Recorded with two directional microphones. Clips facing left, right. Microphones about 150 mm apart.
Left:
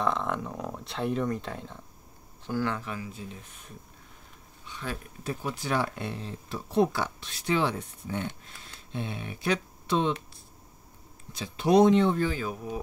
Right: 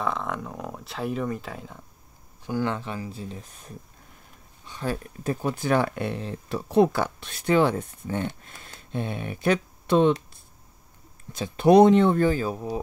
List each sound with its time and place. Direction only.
0.0 s speech: centre (ahead or behind)
2.4 s speech: 20° right (ahead or behind); by 10.1 s 55° right (ahead or behind)
11.3 s speech: 50° right (ahead or behind); by 12.8 s 35° right (ahead or behind)